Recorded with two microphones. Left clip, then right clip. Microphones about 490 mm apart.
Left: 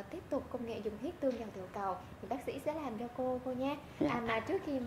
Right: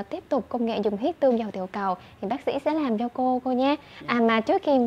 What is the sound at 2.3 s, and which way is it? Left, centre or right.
A woman's voice, right.